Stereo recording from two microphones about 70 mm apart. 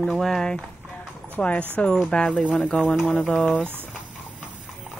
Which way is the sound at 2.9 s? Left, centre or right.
Left.